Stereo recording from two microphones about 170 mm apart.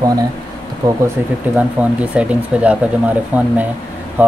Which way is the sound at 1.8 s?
10° right (ahead or behind).